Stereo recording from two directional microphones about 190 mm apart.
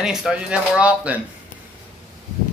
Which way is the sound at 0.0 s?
5° right (ahead or behind).